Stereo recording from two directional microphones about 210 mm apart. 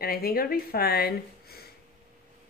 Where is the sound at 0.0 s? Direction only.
45° left (ahead or behind).